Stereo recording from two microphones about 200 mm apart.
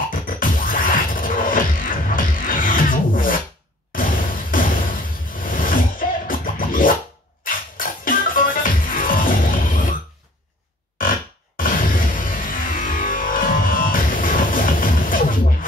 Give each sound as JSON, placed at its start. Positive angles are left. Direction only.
{"t": 0.1, "sound": "music", "side_deg": 45}
{"t": 4.5, "sound": "music", "side_deg": 45}
{"t": 5.4, "sound": "scratching", "side_deg": 45}
{"t": 7.4, "sound": "music", "side_deg": 45}
{"t": 11.0, "sound": "music", "side_deg": 45}